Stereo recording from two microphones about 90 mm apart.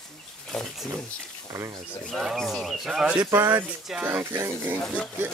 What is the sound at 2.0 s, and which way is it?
Speech, 5° left (ahead or behind).